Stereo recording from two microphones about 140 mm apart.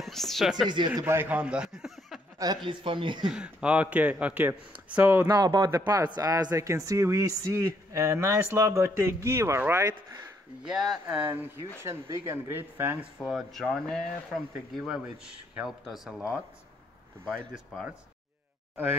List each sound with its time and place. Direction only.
0.0 s speech: centre (ahead or behind)
0.7 s a woman's voice: 30° right (ahead or behind)
1.0 s a man's voice: 15° right (ahead or behind)
2.3 s a woman's voice: 30° right (ahead or behind)
3.3 s speech: 5° right (ahead or behind)
5.3 s a woman's voice: 30° right (ahead or behind)
10.6 s speech: 5° right (ahead or behind)
13.2 s speech: centre (ahead or behind)
17.3 s speech: 10° right (ahead or behind)